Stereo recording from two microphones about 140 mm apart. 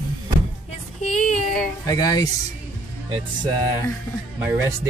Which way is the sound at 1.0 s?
60° left (ahead or behind).